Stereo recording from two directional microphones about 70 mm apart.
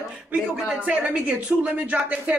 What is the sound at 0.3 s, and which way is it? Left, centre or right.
Speech, centre.